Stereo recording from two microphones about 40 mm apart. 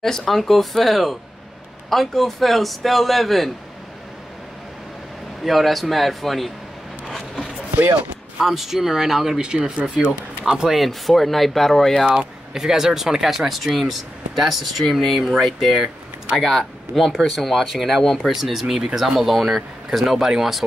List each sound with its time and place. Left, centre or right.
0.0 s speech: centre
5.4 s speech: centre
8.4 s speech: centre
9.4 s speech: right
10.4 s speech: centre
10.8 s speech: centre
12.2 s speech: centre